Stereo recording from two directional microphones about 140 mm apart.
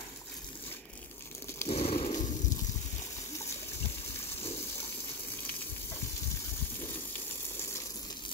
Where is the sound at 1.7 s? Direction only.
45° left (ahead or behind).